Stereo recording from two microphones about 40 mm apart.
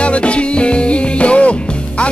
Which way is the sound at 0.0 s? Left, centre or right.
Left.